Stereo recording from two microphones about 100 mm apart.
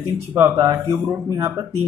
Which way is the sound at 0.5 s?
35° right (ahead or behind).